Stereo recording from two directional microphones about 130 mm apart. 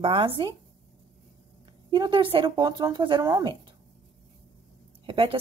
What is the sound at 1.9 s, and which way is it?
A woman's voice, 40° right (ahead or behind).